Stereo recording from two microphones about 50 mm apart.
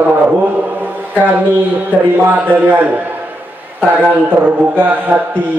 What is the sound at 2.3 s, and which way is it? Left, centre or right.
Speech, right.